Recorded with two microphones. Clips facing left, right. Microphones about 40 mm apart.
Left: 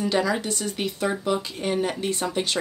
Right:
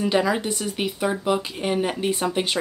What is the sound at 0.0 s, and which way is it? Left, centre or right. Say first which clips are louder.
Speech: right 2 dB; right.